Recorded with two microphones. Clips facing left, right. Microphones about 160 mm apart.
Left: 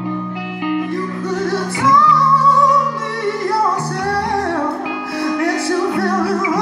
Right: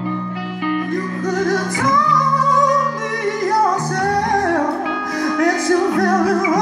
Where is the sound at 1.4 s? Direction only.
40° right (ahead or behind).